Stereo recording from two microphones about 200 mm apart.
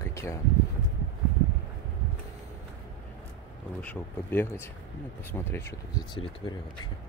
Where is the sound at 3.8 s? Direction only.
10° left (ahead or behind).